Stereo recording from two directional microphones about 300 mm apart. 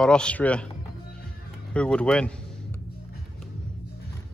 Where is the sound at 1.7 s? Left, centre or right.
Centre.